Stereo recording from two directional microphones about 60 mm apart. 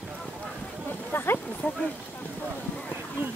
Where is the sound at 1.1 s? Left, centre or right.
Left.